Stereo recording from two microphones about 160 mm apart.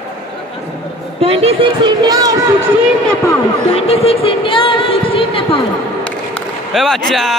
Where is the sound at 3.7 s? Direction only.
40° left (ahead or behind).